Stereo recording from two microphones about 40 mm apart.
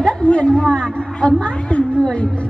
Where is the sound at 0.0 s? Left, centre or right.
Left.